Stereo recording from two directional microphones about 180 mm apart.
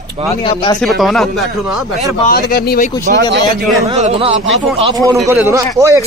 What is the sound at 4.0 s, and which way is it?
Speech, 35° right (ahead or behind).